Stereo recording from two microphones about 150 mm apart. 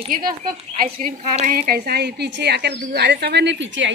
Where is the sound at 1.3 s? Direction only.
60° right (ahead or behind); by 3.3 s 90° right.